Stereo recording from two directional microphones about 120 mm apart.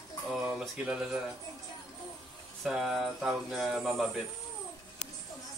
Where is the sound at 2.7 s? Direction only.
5° right (ahead or behind).